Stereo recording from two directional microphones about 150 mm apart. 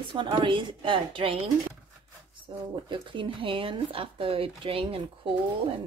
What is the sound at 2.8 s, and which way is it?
Speech, 30° right (ahead or behind).